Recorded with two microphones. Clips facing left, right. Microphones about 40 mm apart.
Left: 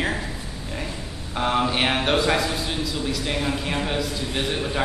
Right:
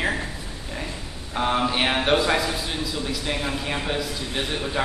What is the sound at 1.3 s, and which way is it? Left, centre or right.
A man's voice, centre.